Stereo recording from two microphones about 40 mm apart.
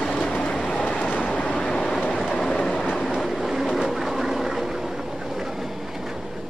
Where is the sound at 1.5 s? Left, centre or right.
Centre.